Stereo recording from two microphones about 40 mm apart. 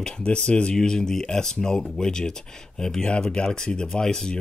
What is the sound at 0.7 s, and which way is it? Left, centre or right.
Speech, centre.